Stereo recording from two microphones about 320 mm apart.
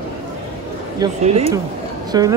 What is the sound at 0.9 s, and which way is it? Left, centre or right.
Speech, centre.